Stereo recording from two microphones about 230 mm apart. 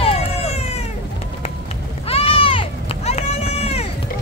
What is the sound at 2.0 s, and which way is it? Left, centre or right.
Run, left.